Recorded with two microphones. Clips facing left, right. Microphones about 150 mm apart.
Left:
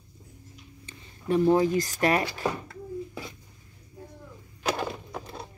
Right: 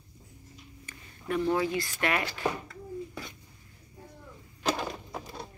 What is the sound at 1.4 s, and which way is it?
Speech, 35° left (ahead or behind).